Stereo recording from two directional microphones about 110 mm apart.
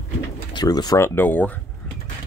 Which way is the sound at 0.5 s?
40° left (ahead or behind).